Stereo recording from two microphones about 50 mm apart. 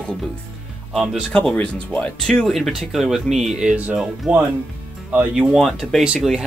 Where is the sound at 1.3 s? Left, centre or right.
Left.